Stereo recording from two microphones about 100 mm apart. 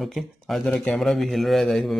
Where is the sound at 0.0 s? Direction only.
Centre (ahead or behind).